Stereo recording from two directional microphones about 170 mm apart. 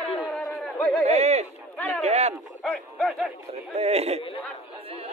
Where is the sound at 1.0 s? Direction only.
40° right (ahead or behind).